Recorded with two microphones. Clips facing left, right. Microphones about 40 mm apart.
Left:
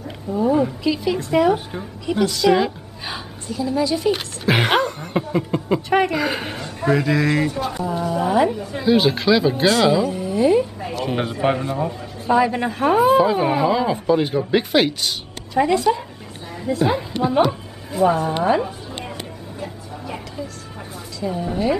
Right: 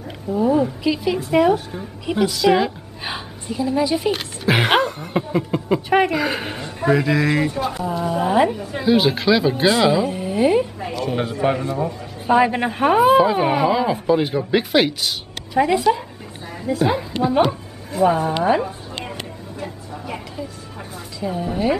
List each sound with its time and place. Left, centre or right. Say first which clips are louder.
0.3 s speech: right 1 dB; centre
3.1 s a woman's voice: right 1 dB; right
4.1 s speech: even; centre
8.5 s speech: even; centre; by 10.7 s right
11.1 s a man's voice: even; centre
12.3 s a woman's voice: right 1 dB; right
13.0 s speech: right 1 dB; centre
17.5 s a sound: even; centre
18.4 s speech: even; centre
19.6 s vehicle: right 1 dB; centre
21.2 s speech: even; centre